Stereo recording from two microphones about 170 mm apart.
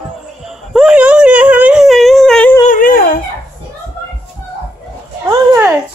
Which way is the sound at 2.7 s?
55° left (ahead or behind).